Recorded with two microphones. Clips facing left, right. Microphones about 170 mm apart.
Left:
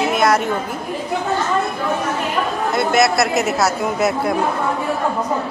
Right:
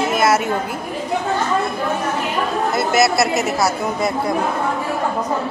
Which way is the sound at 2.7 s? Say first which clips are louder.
Left 2 dB; centre (ahead or behind).